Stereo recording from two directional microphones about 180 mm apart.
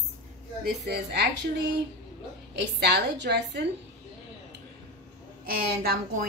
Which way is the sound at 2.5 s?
70° right (ahead or behind).